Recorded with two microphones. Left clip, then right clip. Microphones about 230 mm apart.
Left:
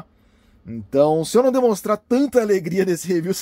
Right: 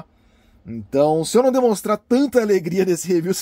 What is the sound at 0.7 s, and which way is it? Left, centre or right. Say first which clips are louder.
Speech: even; centre.